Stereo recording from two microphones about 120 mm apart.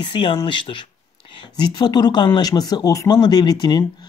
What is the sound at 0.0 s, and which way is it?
Speech, 45° left (ahead or behind).